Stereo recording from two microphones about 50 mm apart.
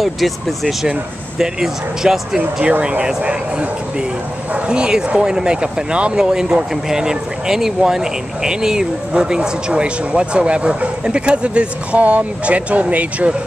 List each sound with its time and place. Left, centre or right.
0.0 s speech: centre
1.4 s speech: centre
6.1 s speech: centre; by 13.4 s right